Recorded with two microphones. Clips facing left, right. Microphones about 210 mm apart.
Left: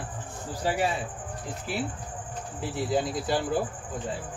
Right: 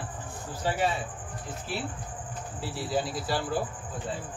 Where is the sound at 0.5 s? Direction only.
10° left (ahead or behind).